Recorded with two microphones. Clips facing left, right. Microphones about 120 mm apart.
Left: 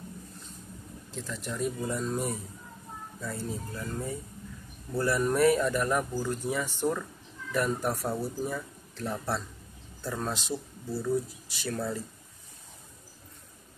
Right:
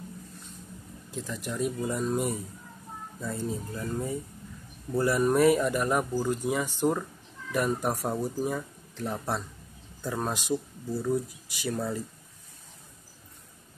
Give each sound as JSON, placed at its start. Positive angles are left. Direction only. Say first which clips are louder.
{"t": 1.1, "sound": "speech", "louder": "right 2 dB", "side_deg": -10}
{"t": 3.2, "sound": "speech", "louder": "right 3 dB", "side_deg": -20}